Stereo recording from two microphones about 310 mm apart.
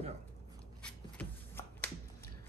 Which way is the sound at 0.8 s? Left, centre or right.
Centre.